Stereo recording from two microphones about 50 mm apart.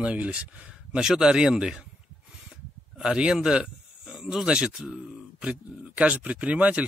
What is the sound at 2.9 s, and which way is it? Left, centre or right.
A man's voice, centre.